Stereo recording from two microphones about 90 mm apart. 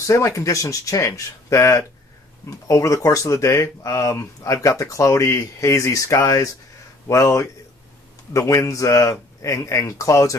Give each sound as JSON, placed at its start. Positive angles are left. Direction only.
{"t": 0.0, "sound": "speech", "side_deg": 35}